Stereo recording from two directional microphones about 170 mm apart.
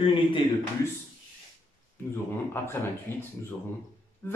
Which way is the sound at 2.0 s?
10° left (ahead or behind).